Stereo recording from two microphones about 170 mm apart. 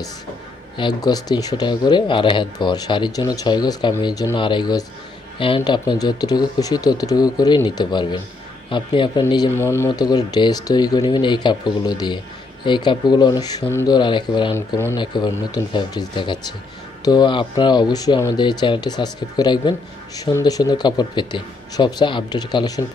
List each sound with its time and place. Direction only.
0.7 s speech: 25° left (ahead or behind)
14.7 s speech: 15° left (ahead or behind)